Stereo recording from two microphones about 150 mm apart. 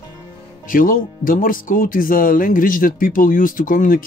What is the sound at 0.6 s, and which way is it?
Speech, 70° left (ahead or behind).